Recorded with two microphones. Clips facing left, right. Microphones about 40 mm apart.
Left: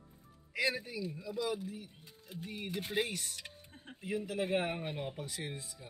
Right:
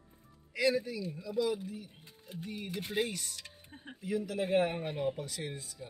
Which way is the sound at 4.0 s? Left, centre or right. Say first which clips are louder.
Right 3 dB; left.